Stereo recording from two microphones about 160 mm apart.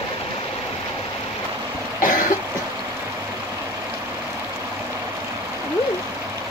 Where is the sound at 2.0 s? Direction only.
60° left (ahead or behind).